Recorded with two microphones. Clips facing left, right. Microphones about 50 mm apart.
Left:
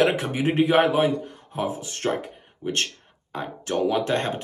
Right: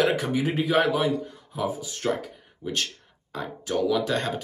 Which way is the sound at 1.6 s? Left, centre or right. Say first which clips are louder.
Right 1 dB; left.